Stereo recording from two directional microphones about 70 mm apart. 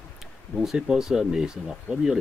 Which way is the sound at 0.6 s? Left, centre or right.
Centre.